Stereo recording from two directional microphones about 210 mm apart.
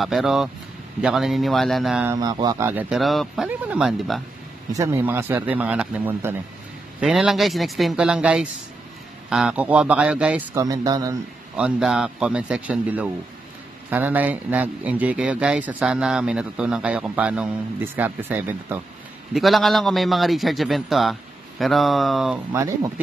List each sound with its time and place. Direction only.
0.0 s a man's voice: centre (ahead or behind)
2.1 s a man's voice: 20° right (ahead or behind)
11.5 s a man's voice: 5° right (ahead or behind)
22.5 s a man's voice: 15° right (ahead or behind)